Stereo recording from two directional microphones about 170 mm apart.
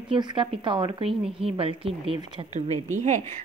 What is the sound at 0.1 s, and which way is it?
A woman's voice, 30° right (ahead or behind).